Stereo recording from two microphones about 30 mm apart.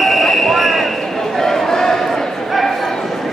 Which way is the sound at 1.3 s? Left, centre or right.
Centre.